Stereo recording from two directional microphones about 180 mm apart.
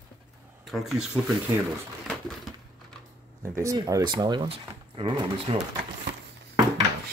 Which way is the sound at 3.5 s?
15° right (ahead or behind).